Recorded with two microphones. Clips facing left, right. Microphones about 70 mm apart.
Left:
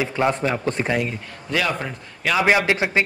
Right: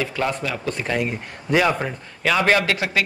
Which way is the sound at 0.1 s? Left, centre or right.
Left.